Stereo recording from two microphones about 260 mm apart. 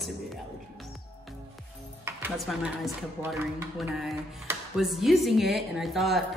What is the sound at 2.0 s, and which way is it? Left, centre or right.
Dishes, centre.